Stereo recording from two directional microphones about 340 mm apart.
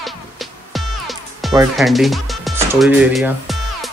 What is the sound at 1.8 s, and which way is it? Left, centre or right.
Speech, centre.